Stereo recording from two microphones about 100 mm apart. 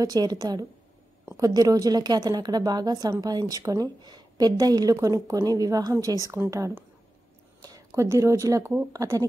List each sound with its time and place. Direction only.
0.0 s speech: 40° right (ahead or behind)